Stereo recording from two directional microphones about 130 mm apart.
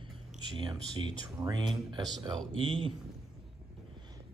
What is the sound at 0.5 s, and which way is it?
Speech, 35° right (ahead or behind).